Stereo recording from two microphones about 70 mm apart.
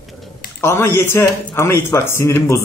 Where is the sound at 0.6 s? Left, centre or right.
Left.